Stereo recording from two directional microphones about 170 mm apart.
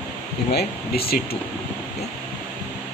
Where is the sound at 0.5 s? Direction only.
65° left (ahead or behind).